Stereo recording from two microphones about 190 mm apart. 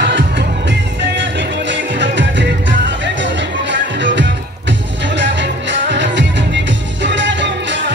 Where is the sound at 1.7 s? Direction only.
70° right (ahead or behind).